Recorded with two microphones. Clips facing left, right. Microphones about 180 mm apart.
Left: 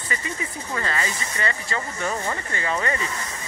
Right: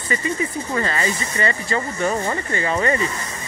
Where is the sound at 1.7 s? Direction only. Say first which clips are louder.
Right 8 dB; 30° right (ahead or behind).